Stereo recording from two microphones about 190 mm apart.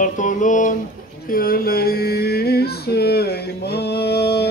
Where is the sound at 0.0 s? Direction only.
45° left (ahead or behind).